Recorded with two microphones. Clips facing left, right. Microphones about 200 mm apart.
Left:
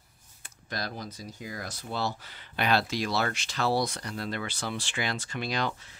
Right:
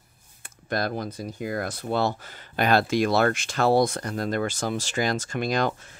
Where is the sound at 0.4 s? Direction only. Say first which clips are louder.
Right 9 dB; 55° right (ahead or behind).